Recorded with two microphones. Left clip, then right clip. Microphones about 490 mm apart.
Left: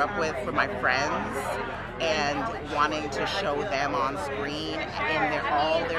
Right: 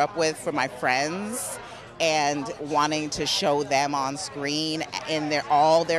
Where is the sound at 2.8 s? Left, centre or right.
Right.